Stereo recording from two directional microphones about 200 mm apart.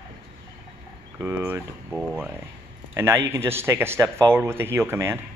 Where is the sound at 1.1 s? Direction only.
10° right (ahead or behind).